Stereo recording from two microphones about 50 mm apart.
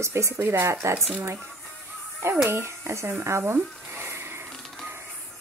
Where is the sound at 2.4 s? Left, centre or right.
Right.